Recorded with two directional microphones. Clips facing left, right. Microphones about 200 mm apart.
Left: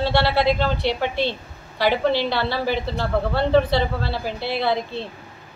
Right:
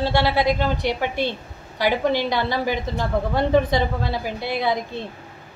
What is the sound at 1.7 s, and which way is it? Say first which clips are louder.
A woman's voice: left 1 dB; 15° right (ahead or behind).